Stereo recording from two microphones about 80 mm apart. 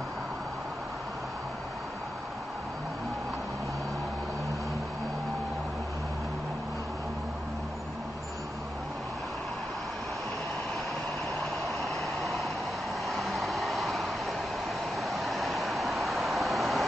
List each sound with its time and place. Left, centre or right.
11.3 s vehicle: centre